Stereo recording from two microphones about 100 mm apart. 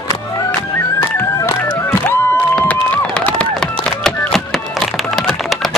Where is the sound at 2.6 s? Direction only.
15° left (ahead or behind).